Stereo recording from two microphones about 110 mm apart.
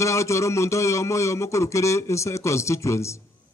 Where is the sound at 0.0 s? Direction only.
25° left (ahead or behind).